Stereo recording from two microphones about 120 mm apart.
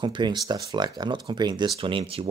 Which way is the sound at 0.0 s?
40° right (ahead or behind).